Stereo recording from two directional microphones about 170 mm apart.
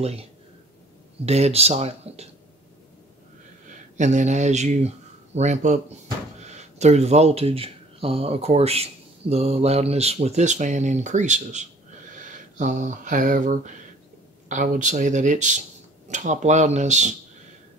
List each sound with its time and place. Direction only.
0.0 s speech: 35° right (ahead or behind)
3.6 s speech: 45° right (ahead or behind)